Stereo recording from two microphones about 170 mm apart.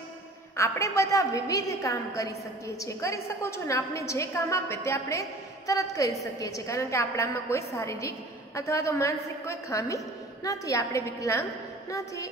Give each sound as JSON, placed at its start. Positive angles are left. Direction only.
{"t": 0.6, "sound": "a woman's voice", "side_deg": 15}